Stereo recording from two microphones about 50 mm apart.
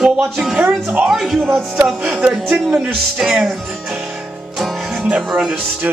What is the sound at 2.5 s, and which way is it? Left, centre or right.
Speech, centre.